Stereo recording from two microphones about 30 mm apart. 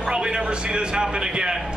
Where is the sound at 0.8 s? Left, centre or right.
Right.